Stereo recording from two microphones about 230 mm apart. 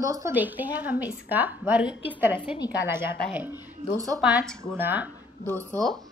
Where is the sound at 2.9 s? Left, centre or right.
Centre.